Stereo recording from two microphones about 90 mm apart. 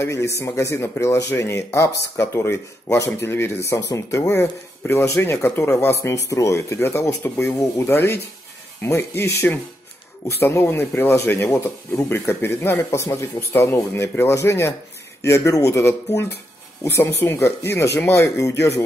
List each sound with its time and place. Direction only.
0.0 s speech: 30° left (ahead or behind)